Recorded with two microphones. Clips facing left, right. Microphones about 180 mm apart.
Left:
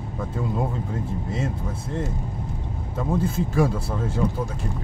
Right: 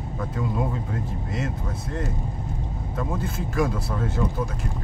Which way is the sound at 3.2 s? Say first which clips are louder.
Left 5 dB; 30° left (ahead or behind).